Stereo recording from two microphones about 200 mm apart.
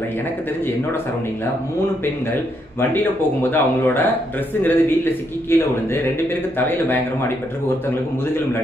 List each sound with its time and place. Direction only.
2.9 s a man's voice: 10° left (ahead or behind)